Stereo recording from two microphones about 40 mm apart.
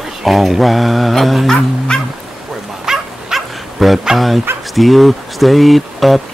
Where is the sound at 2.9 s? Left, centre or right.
Centre.